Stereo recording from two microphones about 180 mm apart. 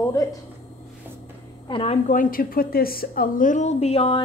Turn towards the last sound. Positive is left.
turn(degrees=30)  # may be behind; listen again after turning